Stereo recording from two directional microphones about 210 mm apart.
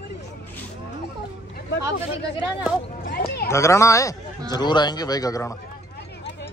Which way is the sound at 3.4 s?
15° left (ahead or behind).